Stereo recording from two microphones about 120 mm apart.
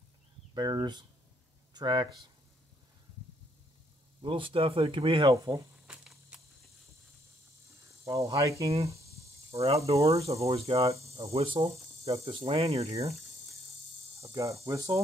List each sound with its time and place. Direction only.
0.6 s speech: 35° right (ahead or behind)
4.2 s speech: 45° right (ahead or behind)
5.3 s cricket: 25° right (ahead or behind)
5.9 s a sound: 10° right (ahead or behind)
8.0 s insect: 25° right (ahead or behind)
10.0 s speech: 55° right (ahead or behind)
11.3 s cricket: 50° right (ahead or behind)
14.3 s cricket: 25° right (ahead or behind)